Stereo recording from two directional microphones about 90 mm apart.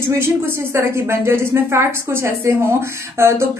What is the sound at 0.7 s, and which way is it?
A woman's voice, 30° right (ahead or behind).